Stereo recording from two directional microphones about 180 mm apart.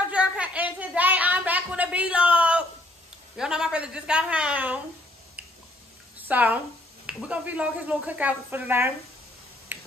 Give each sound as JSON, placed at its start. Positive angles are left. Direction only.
{"t": 0.0, "sound": "a sound", "side_deg": -5}
{"t": 3.3, "sound": "a woman's voice", "side_deg": -5}
{"t": 6.1, "sound": "a woman's voice", "side_deg": -10}
{"t": 9.7, "sound": "finger snapping", "side_deg": -10}